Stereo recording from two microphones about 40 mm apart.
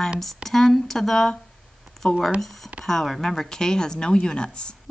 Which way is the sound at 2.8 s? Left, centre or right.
Centre.